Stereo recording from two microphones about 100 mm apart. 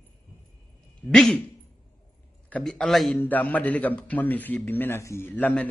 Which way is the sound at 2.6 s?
5° left (ahead or behind).